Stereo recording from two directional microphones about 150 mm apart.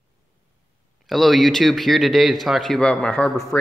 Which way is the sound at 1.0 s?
Centre (ahead or behind).